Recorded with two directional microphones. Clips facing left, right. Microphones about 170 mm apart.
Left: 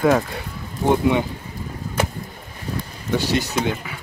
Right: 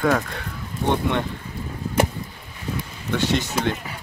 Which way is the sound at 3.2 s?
Centre (ahead or behind).